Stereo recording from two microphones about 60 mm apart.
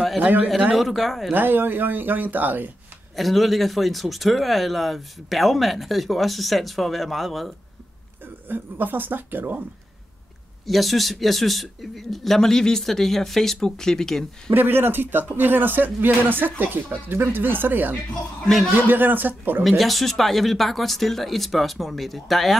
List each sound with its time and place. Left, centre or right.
0.2 s a man's voice: right
0.7 s speech: centre
1.3 s speech: right
3.2 s speech: centre
8.5 s speech: right
10.7 s speech: centre
14.5 s speech: right
18.4 s speech: centre
18.8 s speech: right
19.8 s speech: centre